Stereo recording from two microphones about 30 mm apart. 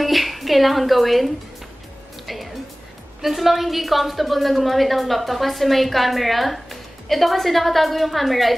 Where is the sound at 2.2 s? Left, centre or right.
Centre.